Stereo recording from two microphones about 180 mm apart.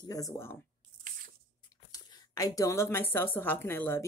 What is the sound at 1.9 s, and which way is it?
A woman's voice, 20° left (ahead or behind).